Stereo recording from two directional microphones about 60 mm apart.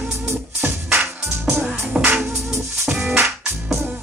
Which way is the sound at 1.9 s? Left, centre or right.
Centre.